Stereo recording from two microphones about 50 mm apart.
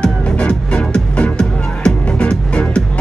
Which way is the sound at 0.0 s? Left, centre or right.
Centre.